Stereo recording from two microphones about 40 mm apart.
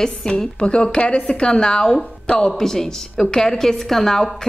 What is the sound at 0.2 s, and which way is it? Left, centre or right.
A woman's voice, left.